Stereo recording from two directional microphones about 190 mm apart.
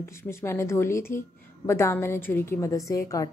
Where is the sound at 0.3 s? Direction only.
15° left (ahead or behind).